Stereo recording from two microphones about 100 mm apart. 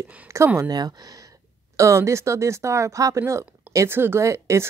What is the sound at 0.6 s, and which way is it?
Speech, 40° right (ahead or behind).